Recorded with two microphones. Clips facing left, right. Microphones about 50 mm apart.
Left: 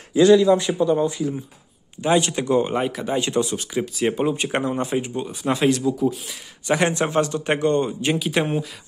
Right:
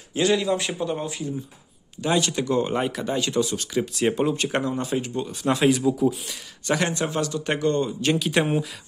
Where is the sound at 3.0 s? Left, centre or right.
Left.